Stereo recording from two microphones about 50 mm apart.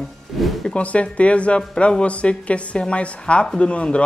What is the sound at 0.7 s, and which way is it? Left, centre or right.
Speech, left.